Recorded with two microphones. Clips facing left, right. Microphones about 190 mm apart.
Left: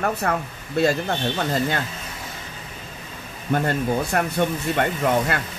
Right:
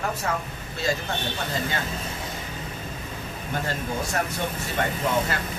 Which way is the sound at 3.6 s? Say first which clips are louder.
Left 6 dB; 60° left (ahead or behind).